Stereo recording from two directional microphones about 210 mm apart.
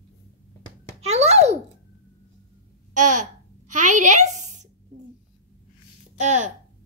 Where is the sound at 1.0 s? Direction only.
30° right (ahead or behind).